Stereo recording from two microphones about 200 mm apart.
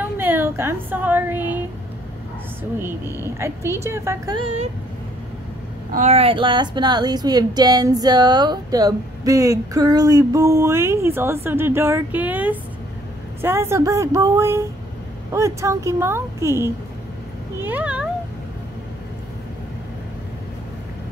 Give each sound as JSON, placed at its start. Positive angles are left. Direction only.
{"t": 0.0, "sound": "a woman's voice", "side_deg": -10}
{"t": 3.8, "sound": "a woman's voice", "side_deg": -15}
{"t": 5.9, "sound": "a woman's voice", "side_deg": -30}
{"t": 17.6, "sound": "cat", "side_deg": -10}